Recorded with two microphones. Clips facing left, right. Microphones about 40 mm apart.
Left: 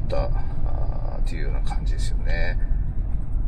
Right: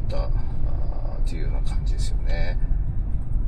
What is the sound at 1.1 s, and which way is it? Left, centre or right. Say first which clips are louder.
Speech: left 1 dB; left.